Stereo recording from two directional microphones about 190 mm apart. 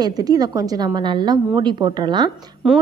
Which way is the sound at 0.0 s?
20° right (ahead or behind).